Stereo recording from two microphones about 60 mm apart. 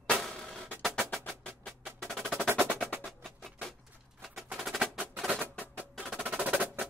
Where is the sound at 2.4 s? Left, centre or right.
Right.